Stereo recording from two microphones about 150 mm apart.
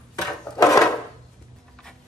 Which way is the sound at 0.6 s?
20° left (ahead or behind).